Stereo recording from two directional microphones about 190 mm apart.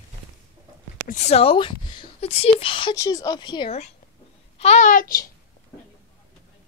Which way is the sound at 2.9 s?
15° left (ahead or behind).